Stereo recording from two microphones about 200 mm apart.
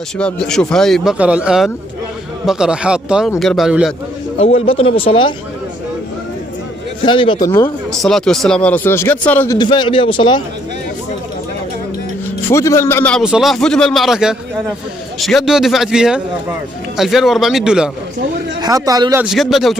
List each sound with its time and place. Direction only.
0.2 s speech: 5° left (ahead or behind)
4.4 s speech: 30° left (ahead or behind)
7.1 s speech: 25° left (ahead or behind)
7.9 s speech: centre (ahead or behind)
9.6 s speech: 25° left (ahead or behind)
12.4 s speech: 15° left (ahead or behind)
13.2 s speech: centre (ahead or behind)
18.6 s a man's voice: 20° right (ahead or behind)
19.2 s speech: centre (ahead or behind)